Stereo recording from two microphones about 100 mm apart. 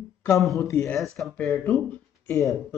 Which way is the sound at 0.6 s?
30° left (ahead or behind).